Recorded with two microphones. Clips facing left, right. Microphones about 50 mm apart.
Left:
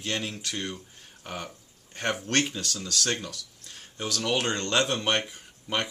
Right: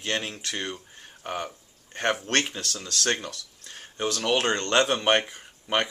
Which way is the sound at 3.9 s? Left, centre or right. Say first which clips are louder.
Right 3 dB; right.